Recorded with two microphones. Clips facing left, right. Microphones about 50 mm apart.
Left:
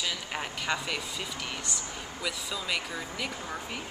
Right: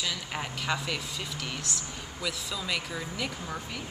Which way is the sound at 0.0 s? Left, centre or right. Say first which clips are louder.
Even; centre.